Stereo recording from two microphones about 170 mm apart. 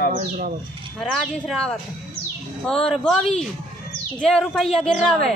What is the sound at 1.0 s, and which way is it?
Speech, centre (ahead or behind).